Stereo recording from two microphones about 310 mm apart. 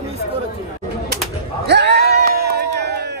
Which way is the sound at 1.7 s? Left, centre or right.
Right.